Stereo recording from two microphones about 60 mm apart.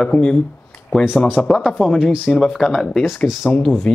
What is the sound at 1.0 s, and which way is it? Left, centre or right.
Speech, left.